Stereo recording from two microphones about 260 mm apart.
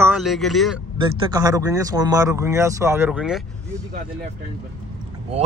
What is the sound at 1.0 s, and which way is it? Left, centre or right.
Speech, centre.